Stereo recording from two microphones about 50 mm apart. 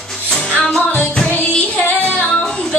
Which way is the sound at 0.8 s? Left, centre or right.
Left.